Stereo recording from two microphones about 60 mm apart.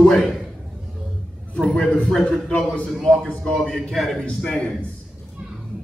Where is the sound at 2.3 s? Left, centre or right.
Centre.